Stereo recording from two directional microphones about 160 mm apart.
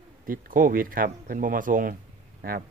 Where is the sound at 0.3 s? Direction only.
60° right (ahead or behind).